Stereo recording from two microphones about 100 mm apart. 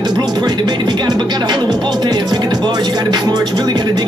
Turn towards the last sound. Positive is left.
turn(degrees=-45)  # may be behind; listen again after turning